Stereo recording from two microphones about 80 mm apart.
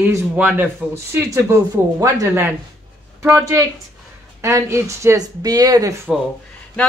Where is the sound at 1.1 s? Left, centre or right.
Right.